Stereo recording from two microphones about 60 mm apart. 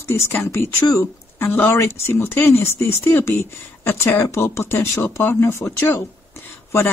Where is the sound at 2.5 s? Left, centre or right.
Left.